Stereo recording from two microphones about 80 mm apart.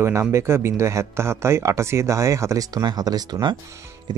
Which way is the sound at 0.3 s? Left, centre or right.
Right.